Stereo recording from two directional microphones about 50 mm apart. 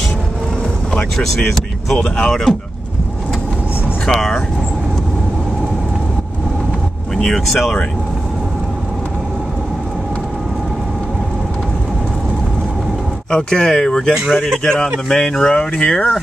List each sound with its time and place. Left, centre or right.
1.1 s speech: centre
2.0 s speech: centre
4.0 s speech: centre
7.2 s speech: centre
13.3 s speech: centre